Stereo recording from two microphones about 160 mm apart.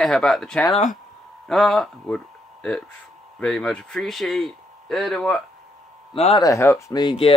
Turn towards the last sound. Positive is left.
turn(degrees=30)  # may be behind; listen again after turning